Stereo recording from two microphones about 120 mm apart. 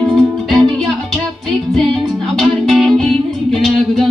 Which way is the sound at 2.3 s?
Centre (ahead or behind).